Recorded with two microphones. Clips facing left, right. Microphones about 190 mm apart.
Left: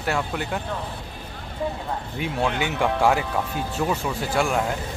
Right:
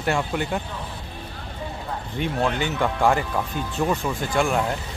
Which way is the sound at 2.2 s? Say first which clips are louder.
Right 1 dB; 10° left (ahead or behind).